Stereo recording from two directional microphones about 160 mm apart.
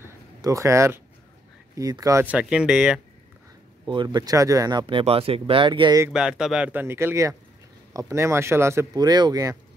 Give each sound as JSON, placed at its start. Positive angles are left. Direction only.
{"t": 0.0, "sound": "a sound", "side_deg": -20}
{"t": 1.8, "sound": "speech", "side_deg": -20}
{"t": 2.2, "sound": "speech", "side_deg": -5}
{"t": 3.8, "sound": "speech", "side_deg": -30}
{"t": 6.0, "sound": "speech", "side_deg": -5}